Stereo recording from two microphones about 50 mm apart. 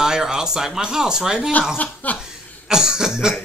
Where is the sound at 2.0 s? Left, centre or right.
Left.